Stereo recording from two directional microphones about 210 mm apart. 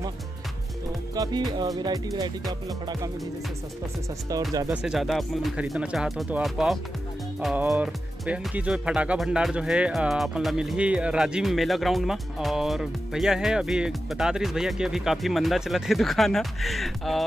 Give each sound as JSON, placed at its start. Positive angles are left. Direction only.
{"t": 1.1, "sound": "music", "side_deg": -15}
{"t": 4.8, "sound": "speech", "side_deg": 0}